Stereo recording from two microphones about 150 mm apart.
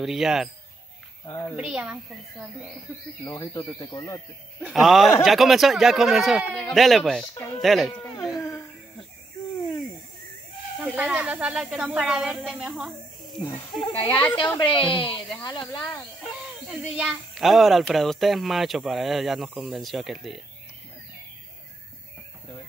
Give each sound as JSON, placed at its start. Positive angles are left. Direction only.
{"t": 0.0, "sound": "speech", "side_deg": -5}
{"t": 1.2, "sound": "a child's voice", "side_deg": 20}
{"t": 1.6, "sound": "speech", "side_deg": -5}
{"t": 3.3, "sound": "speech", "side_deg": 20}
{"t": 4.6, "sound": "speech", "side_deg": -5}
{"t": 7.3, "sound": "speech", "side_deg": 25}
{"t": 7.6, "sound": "speech", "side_deg": 0}
{"t": 8.0, "sound": "cat", "side_deg": 0}
{"t": 8.4, "sound": "a sound", "side_deg": 20}
{"t": 10.8, "sound": "speech", "side_deg": -10}
{"t": 13.7, "sound": "a woman's voice", "side_deg": 30}
{"t": 16.6, "sound": "speech", "side_deg": -5}